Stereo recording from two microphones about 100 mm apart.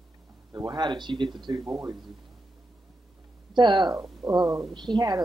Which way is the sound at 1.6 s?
40° right (ahead or behind).